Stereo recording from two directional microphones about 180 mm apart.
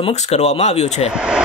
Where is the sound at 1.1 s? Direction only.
5° right (ahead or behind).